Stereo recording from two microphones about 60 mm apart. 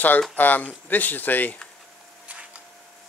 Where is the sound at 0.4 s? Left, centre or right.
Left.